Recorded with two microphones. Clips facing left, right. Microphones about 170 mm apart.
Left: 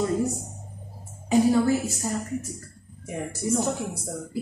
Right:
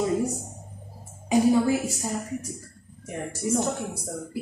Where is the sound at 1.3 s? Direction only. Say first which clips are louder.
Even; 15° right (ahead or behind).